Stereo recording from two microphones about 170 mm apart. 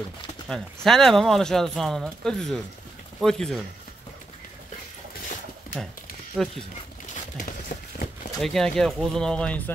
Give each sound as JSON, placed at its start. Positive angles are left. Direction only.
{"t": 0.5, "sound": "speech", "side_deg": 0}
{"t": 6.4, "sound": "speech", "side_deg": 0}
{"t": 7.3, "sound": "a sound", "side_deg": 50}
{"t": 8.4, "sound": "speech", "side_deg": 0}